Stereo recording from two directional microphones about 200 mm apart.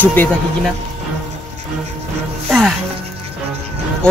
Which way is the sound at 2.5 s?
Centre (ahead or behind).